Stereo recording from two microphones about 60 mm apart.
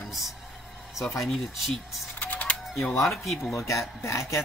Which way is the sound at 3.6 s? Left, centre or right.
Left.